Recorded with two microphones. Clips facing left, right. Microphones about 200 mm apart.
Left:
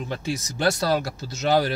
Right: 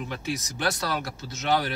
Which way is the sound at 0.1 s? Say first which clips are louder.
Left 3 dB; 30° left (ahead or behind).